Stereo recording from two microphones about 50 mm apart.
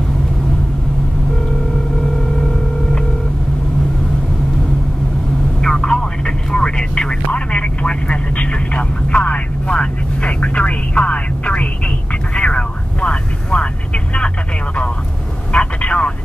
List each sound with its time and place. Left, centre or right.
2.0 s a sound: centre
5.6 s vehicle: centre
15.5 s vehicle: left